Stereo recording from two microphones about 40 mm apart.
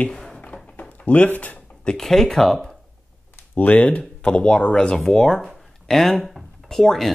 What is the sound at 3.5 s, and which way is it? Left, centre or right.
Speech, left.